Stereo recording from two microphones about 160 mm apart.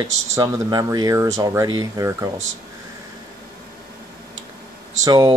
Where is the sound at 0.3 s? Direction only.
25° right (ahead or behind).